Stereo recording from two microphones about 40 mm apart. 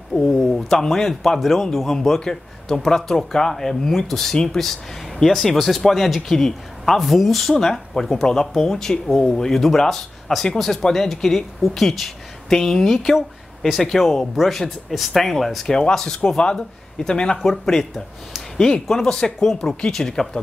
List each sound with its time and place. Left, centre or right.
0.3 s a sound: centre
0.6 s speech: centre
7.5 s speech: centre